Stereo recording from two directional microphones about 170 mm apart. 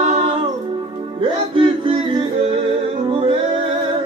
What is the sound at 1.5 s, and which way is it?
Music, 30° right (ahead or behind).